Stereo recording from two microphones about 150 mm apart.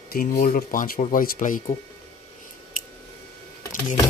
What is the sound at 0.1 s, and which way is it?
Speech, 70° left (ahead or behind).